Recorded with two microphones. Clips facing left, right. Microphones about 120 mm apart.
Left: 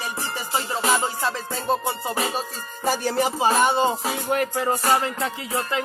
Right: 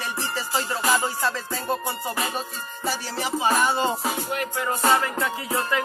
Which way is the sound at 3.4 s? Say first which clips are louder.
Left 2 dB; 25° left (ahead or behind).